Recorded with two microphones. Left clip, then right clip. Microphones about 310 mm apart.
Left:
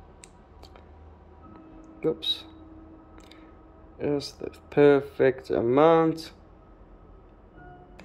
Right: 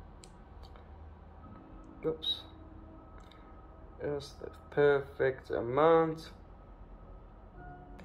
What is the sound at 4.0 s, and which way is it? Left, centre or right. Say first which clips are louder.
Speech: left 9 dB; left.